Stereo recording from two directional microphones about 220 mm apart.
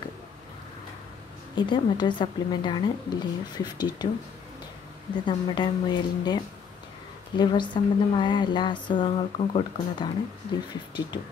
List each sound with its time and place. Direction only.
1.5 s speech: 20° left (ahead or behind)
5.2 s speech: 20° left (ahead or behind)